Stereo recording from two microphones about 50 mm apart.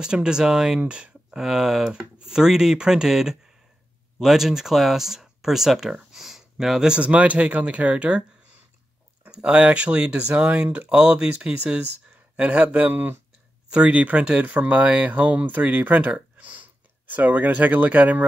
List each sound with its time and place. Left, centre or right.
0.0 s speech: centre
1.4 s speech: centre
6.1 s a sound: centre
6.9 s speech: right
9.3 s speech: right
14.4 s speech: right